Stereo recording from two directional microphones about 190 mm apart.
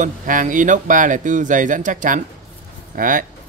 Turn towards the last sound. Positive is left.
turn(degrees=-45)  # may be behind; listen again after turning